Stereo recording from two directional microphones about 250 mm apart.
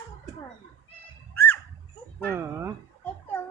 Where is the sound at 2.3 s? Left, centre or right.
Centre.